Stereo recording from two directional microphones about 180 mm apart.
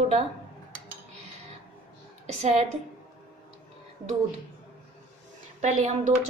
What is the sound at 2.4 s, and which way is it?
Speech, 35° right (ahead or behind).